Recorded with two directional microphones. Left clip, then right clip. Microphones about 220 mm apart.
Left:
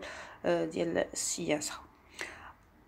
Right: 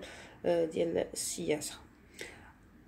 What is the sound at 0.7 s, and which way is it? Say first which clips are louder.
Speech: even; 15° left (ahead or behind).